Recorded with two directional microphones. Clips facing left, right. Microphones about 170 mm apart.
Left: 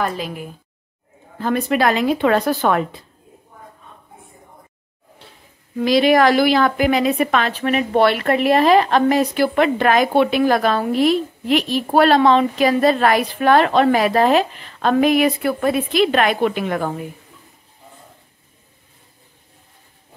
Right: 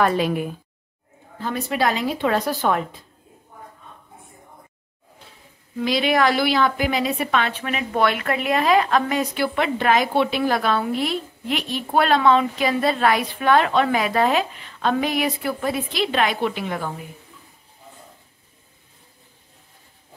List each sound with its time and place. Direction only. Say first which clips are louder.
0.0 s a woman's voice: right 4 dB; 70° right (ahead or behind)
1.4 s speech: left 5 dB; 55° left (ahead or behind)
5.8 s a woman's voice: left 6 dB; 45° left (ahead or behind)
7.9 s speech: left 4 dB; 35° left (ahead or behind)
9.6 s a woman's voice: left 4 dB; 55° left (ahead or behind)
11.9 s speech: left 4 dB; 35° left (ahead or behind)
12.6 s a woman's voice: left 6 dB; 45° left (ahead or behind)